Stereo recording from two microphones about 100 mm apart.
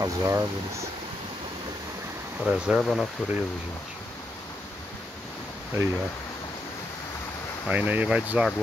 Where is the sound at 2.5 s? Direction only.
10° right (ahead or behind).